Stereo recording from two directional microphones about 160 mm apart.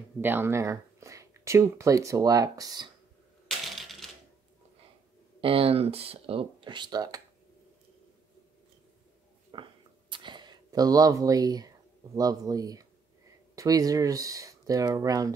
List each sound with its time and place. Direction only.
0.2 s speech: 15° right (ahead or behind)
3.4 s typewriter: centre (ahead or behind)
5.4 s speech: 35° right (ahead or behind)
9.5 s a sound: 30° right (ahead or behind)
12.2 s speech: 20° right (ahead or behind)